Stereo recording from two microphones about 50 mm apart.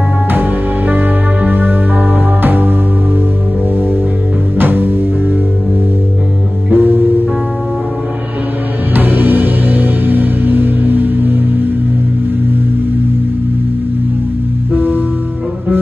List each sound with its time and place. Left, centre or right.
0.3 s music: right
4.6 s music: right
6.7 s music: right
8.9 s music: right
14.7 s music: right